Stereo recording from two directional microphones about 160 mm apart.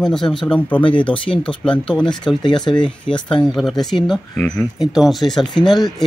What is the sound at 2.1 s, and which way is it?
Speech, 5° left (ahead or behind).